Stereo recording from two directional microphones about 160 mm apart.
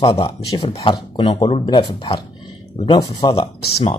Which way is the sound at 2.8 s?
25° left (ahead or behind).